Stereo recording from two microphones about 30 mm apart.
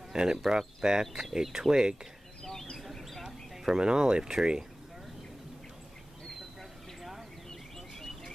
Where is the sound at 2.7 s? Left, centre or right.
Centre.